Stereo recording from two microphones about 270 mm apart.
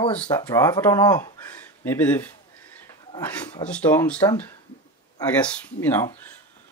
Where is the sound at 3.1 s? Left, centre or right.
Centre.